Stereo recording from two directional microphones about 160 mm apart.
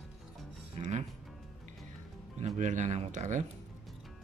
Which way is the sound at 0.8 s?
45° right (ahead or behind).